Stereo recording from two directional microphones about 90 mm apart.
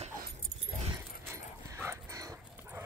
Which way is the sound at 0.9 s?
30° right (ahead or behind).